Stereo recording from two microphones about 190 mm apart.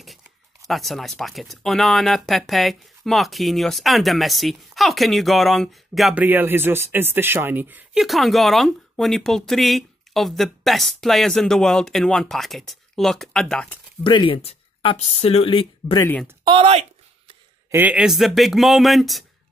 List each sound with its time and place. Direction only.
0.7 s speech: centre (ahead or behind)
14.0 s speech: 25° left (ahead or behind)
16.4 s speech: 30° right (ahead or behind)
17.6 s speech: 10° right (ahead or behind)